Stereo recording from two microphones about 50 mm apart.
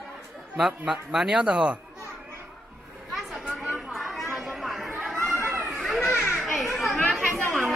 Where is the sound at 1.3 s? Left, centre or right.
Centre.